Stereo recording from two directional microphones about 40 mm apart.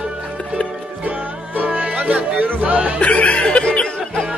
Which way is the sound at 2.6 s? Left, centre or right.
Right.